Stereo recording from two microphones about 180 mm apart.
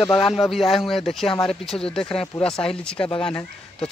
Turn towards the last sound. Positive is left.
turn(degrees=5)  # may be behind; listen again after turning